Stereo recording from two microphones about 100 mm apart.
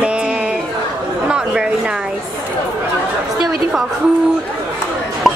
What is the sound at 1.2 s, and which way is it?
Chatter, 10° right (ahead or behind).